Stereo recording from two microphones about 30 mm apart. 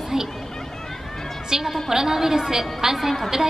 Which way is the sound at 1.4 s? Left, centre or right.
Centre.